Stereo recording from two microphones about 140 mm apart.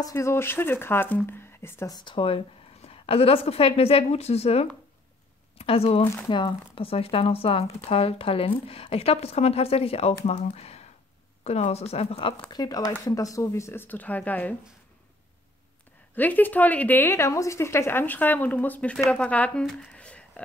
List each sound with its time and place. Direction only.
0.0 s a woman's voice: 20° left (ahead or behind)
2.0 s a woman's voice: 35° left (ahead or behind)
6.2 s a woman's voice: 35° left (ahead or behind)
12.4 s a woman's voice: 30° left (ahead or behind); by 14.5 s 10° left (ahead or behind)
16.2 s a woman's voice: 15° left (ahead or behind)